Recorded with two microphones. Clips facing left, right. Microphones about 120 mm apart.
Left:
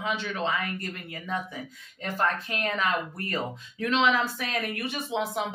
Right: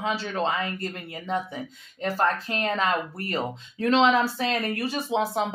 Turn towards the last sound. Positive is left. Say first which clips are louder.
# right 4 dB
turn(degrees=-35)  # may be behind; listen again after turning